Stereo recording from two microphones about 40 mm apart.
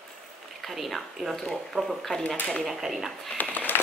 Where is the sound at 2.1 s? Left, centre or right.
Centre.